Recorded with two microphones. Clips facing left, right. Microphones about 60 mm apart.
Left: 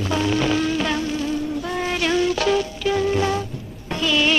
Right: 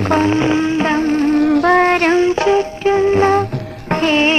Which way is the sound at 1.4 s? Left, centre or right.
Right.